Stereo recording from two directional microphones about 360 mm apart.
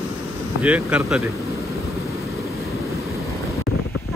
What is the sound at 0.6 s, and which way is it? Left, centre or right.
Speech, centre.